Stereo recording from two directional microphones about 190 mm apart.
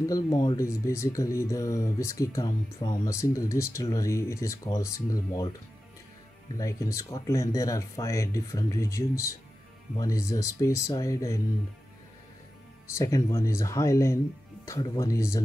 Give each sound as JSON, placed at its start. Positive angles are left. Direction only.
{"t": 0.1, "sound": "speech", "side_deg": 20}
{"t": 6.6, "sound": "speech", "side_deg": 15}
{"t": 12.9, "sound": "speech", "side_deg": 15}